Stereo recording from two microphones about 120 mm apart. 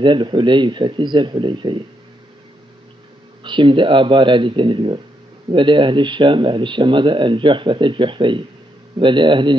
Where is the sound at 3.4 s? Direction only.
40° right (ahead or behind).